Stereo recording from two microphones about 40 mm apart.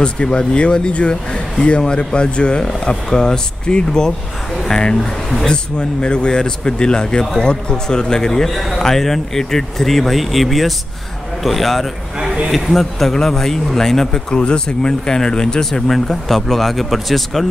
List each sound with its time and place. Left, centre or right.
0.0 s a man's voice: left; by 13.1 s centre
13.1 s speech: centre
14.3 s speech: left; by 17.5 s centre